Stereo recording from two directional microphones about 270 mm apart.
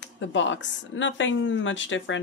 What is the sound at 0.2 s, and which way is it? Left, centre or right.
A woman's voice, left.